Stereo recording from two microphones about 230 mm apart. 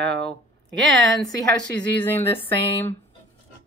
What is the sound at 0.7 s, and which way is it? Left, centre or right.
Speech, centre.